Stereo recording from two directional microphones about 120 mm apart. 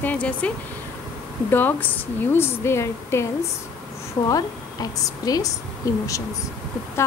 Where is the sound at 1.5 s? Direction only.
15° left (ahead or behind).